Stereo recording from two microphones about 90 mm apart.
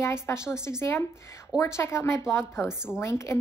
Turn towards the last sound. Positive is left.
turn(degrees=30)  # may be behind; listen again after turning